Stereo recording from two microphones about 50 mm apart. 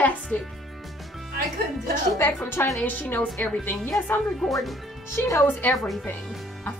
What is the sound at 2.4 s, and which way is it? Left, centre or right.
Speech, left.